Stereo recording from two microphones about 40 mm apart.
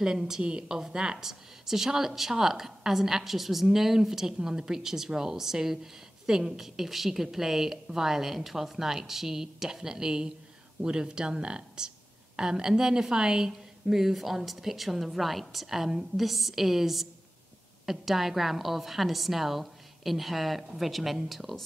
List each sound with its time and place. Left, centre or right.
0.0 s a woman's voice: centre